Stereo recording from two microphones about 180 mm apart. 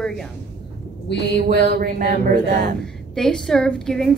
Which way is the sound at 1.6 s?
55° right (ahead or behind).